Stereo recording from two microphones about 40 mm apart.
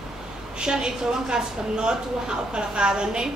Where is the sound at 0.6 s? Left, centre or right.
Right.